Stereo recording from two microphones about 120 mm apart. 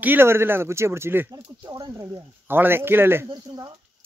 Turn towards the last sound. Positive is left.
turn(degrees=-40)  # may be behind; listen again after turning